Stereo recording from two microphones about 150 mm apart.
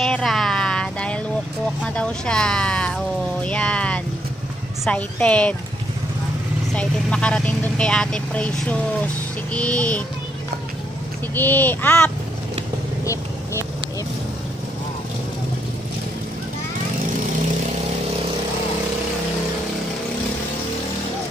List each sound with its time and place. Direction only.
0.0 s a sound: centre (ahead or behind)
2.0 s speech: 5° left (ahead or behind)
6.7 s speech: 5° left (ahead or behind)
11.3 s speech: 10° left (ahead or behind)
13.0 s vehicle: 20° left (ahead or behind)